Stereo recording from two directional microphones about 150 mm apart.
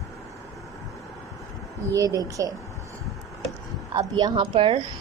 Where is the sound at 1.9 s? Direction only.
25° right (ahead or behind).